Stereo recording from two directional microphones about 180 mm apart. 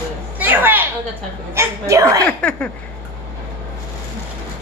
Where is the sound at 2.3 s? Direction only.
10° left (ahead or behind).